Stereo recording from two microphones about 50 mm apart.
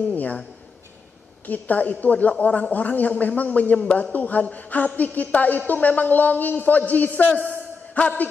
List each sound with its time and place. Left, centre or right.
0.1 s a man's voice: left
1.5 s a woman's voice: left
3.8 s a man's voice: centre
4.1 s a woman's voice: left